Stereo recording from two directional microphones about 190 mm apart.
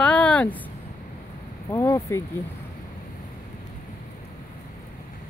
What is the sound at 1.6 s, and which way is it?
Speech, 15° left (ahead or behind).